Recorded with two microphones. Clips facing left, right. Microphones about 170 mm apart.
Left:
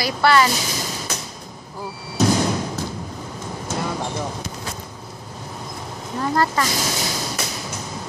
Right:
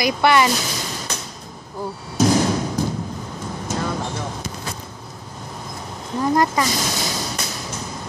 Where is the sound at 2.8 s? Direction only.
15° right (ahead or behind).